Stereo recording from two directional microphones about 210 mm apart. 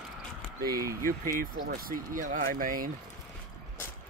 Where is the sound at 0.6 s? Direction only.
15° right (ahead or behind).